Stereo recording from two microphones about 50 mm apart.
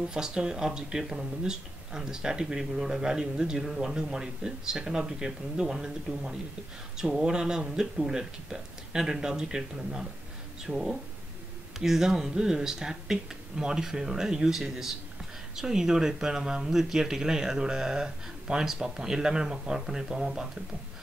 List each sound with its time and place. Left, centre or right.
0.1 s speech: centre